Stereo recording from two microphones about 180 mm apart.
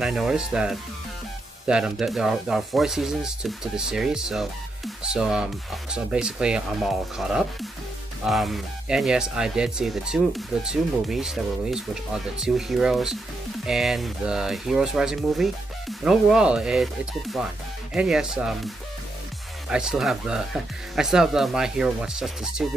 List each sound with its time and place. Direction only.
0.0 s speech: 5° right (ahead or behind)
19.7 s speech: 5° right (ahead or behind)